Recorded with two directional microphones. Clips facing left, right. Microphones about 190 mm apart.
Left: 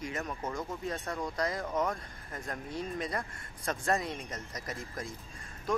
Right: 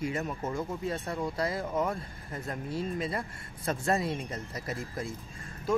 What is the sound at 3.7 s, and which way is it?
Speech, 30° right (ahead or behind).